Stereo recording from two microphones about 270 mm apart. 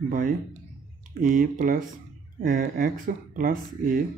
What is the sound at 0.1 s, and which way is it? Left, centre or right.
Speech, right.